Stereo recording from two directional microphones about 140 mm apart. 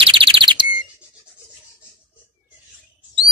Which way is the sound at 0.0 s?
40° right (ahead or behind).